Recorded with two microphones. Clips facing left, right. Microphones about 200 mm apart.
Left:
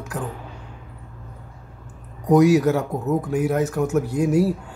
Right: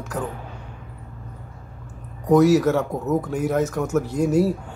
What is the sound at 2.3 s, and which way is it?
Speech, 10° left (ahead or behind).